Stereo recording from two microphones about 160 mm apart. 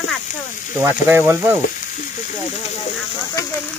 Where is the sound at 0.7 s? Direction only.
15° right (ahead or behind).